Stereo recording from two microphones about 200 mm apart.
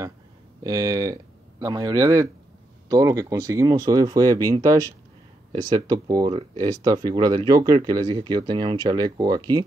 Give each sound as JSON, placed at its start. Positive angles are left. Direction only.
{"t": 0.7, "sound": "speech", "side_deg": -20}